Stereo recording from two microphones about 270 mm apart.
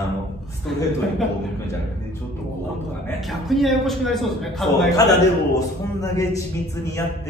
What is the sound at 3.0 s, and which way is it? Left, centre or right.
A man's voice, centre.